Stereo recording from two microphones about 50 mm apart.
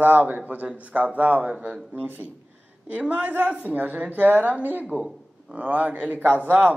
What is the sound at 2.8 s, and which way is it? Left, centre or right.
A man's voice, right.